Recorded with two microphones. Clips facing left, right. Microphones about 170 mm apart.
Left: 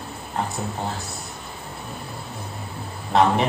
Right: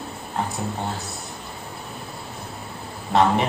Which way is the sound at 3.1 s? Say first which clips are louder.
Even; centre (ahead or behind).